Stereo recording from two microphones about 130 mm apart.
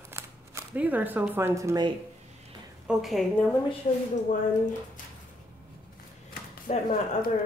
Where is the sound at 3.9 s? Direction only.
50° left (ahead or behind).